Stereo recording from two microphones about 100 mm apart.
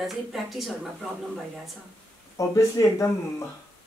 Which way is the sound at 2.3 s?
30° left (ahead or behind).